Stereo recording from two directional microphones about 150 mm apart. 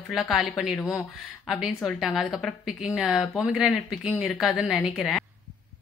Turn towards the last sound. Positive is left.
turn(degrees=0)  # may be behind; listen again after turning